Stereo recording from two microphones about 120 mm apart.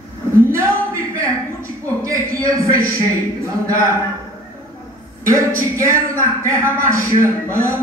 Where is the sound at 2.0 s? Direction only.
25° right (ahead or behind).